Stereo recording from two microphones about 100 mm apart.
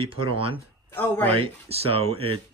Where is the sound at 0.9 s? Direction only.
20° left (ahead or behind).